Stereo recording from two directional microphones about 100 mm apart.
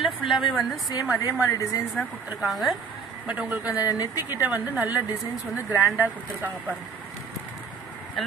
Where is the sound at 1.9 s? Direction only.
Centre (ahead or behind).